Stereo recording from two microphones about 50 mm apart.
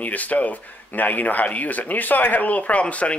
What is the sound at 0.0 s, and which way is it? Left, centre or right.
Speech, left.